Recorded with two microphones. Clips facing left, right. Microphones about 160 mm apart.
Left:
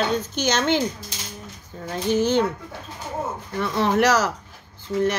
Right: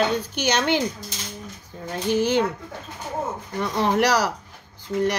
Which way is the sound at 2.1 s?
10° right (ahead or behind).